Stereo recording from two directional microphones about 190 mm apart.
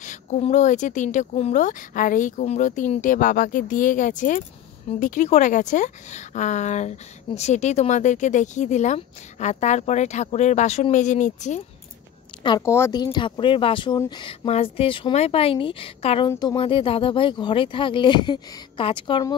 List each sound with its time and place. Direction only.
0.0 s speech: 40° left (ahead or behind)
12.4 s speech: 15° left (ahead or behind)